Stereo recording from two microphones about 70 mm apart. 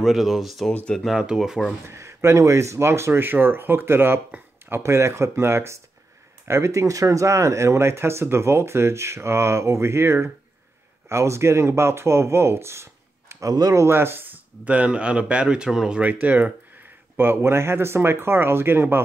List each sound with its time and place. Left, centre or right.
0.0 s speech: centre
1.9 s speech: right
13.5 s speech: right
13.8 s speech: right; by 16.0 s centre
16.0 s speech: right
17.2 s speech: right